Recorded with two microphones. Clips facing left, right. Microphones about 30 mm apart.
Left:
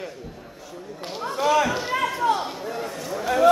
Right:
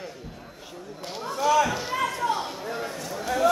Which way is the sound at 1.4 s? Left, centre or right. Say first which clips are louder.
Left 1 dB; left.